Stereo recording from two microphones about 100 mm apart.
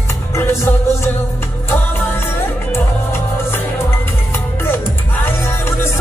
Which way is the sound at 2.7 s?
25° left (ahead or behind).